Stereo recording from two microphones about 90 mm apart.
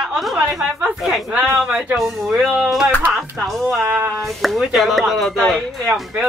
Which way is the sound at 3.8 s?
20° right (ahead or behind).